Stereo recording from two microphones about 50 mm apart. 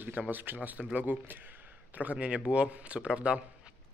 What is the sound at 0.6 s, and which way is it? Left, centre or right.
Speech, right.